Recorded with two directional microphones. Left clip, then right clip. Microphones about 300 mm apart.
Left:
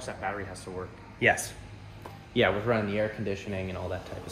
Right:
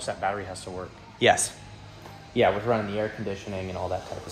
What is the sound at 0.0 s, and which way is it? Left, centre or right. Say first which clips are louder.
Speech: right 5 dB; right.